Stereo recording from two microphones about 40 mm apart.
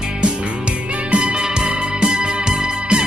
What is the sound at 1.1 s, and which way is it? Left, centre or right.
Music, right.